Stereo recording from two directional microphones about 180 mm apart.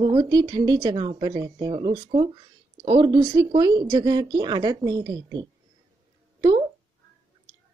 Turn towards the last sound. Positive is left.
turn(degrees=-20)  # may be behind; listen again after turning